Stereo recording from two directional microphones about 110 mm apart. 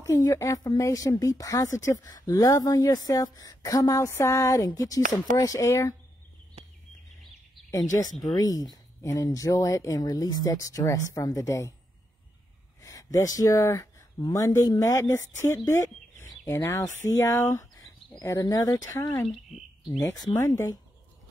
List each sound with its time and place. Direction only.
0.0 s speech: 30° left (ahead or behind)
6.6 s a sound: 65° right (ahead or behind)
7.7 s speech: 30° left (ahead or behind)
12.8 s speech: 30° left (ahead or behind)
19.2 s a sound: centre (ahead or behind)
20.0 s speech: 30° left (ahead or behind)